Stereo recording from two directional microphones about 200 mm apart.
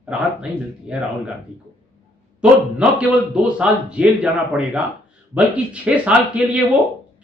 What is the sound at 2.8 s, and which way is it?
A man's voice, 5° right (ahead or behind).